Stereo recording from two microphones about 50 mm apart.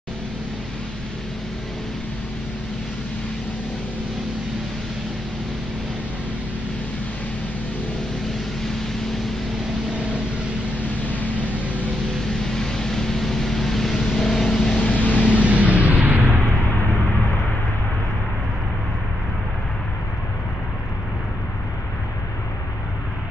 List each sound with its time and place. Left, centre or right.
12.3 s vehicle: centre
14.8 s vehicle: left
15.1 s music: right